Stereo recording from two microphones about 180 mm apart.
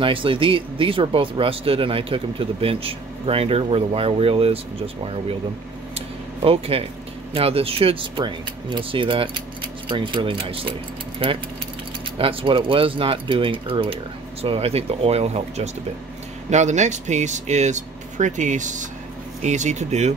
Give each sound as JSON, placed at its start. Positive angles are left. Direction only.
{"t": 0.0, "sound": "speech", "side_deg": -30}
{"t": 5.9, "sound": "a sound", "side_deg": -35}
{"t": 7.3, "sound": "speech", "side_deg": -30}
{"t": 12.2, "sound": "speech", "side_deg": -30}